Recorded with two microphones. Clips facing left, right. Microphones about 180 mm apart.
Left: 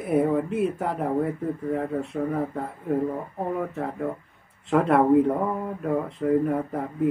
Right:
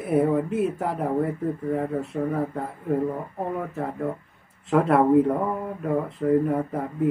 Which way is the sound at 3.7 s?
Centre (ahead or behind).